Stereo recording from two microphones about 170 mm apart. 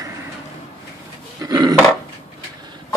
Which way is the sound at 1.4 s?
25° right (ahead or behind).